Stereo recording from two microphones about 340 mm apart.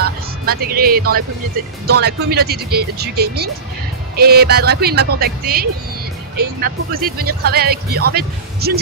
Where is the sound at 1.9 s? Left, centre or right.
Right.